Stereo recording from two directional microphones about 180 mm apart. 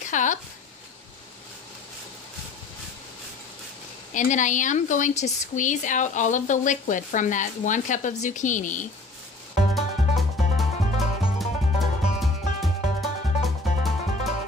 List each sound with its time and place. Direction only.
0.0 s speech: 45° left (ahead or behind)
4.1 s a woman's voice: 45° left (ahead or behind)
9.8 s music: centre (ahead or behind)